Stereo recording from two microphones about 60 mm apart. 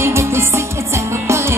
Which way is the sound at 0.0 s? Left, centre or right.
Right.